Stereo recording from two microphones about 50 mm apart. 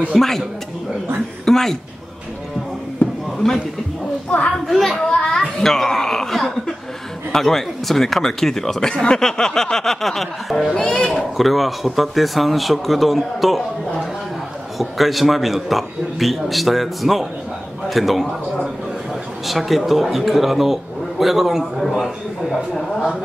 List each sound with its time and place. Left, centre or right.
0.1 s speech: centre
1.4 s a woman's voice: centre
3.4 s speech: centre
4.6 s a man's voice: centre
5.0 s speech: centre
10.8 s a child's voice: left
11.1 s a man's voice: centre
14.8 s a man's voice: centre
19.4 s a man's voice: centre